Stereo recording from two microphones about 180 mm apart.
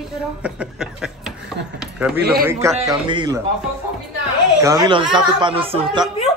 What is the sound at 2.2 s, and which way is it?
Speech, 60° right (ahead or behind).